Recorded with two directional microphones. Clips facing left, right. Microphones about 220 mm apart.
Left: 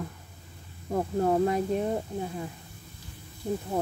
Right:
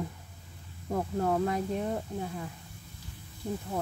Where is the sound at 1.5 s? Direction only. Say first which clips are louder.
Left 4 dB; 15° left (ahead or behind).